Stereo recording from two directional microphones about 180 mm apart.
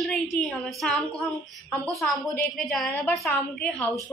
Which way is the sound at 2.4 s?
Centre (ahead or behind).